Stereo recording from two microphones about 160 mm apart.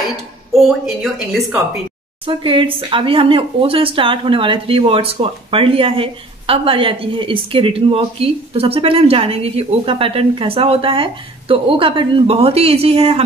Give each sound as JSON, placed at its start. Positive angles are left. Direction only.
{"t": 0.6, "sound": "speech", "side_deg": 0}
{"t": 2.2, "sound": "speech", "side_deg": -30}